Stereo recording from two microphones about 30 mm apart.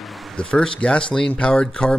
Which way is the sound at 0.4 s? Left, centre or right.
Left.